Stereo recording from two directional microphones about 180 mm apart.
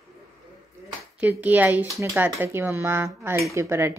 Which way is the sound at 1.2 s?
10° right (ahead or behind).